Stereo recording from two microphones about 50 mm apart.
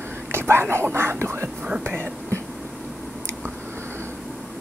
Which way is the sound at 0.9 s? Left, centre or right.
Right.